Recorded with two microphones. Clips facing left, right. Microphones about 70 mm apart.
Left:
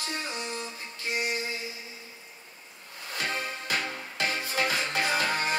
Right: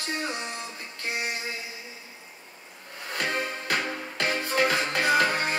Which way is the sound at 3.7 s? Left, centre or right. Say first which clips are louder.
Right 3 dB; right.